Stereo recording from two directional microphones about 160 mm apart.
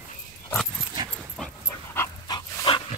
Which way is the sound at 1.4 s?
Centre (ahead or behind).